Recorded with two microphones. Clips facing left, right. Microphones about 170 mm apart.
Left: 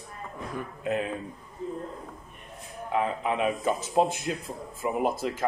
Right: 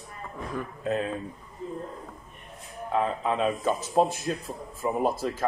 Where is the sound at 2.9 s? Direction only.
15° left (ahead or behind).